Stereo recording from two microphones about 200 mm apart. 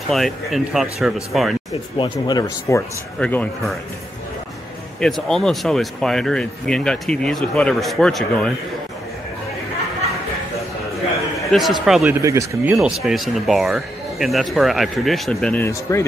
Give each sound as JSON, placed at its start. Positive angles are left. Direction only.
{"t": 0.1, "sound": "speech", "side_deg": 0}
{"t": 2.0, "sound": "speech", "side_deg": 20}
{"t": 3.2, "sound": "a man's voice", "side_deg": 5}
{"t": 5.0, "sound": "speech", "side_deg": 0}
{"t": 11.3, "sound": "a man's voice", "side_deg": 0}
{"t": 12.2, "sound": "speech", "side_deg": -15}
{"t": 12.7, "sound": "speech", "side_deg": 0}